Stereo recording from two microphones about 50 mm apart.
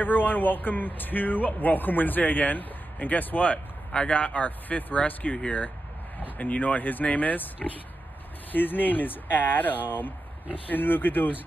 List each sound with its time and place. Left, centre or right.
0.0 s speech: left